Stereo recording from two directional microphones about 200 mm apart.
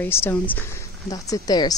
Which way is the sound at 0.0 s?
10° left (ahead or behind).